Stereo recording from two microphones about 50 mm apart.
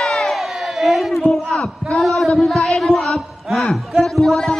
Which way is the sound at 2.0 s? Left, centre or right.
Centre.